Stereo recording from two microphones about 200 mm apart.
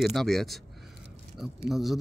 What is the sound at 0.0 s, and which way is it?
Speech, centre (ahead or behind).